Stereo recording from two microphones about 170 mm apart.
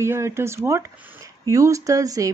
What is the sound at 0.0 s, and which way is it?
Speech, 15° right (ahead or behind).